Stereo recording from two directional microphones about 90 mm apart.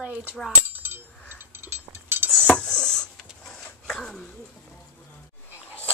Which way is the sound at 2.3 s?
10° left (ahead or behind).